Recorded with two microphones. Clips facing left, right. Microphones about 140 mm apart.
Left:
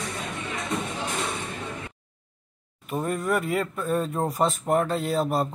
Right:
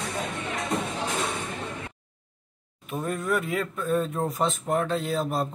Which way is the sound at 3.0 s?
Centre (ahead or behind).